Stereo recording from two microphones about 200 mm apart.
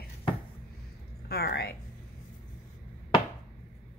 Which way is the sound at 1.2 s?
50° left (ahead or behind).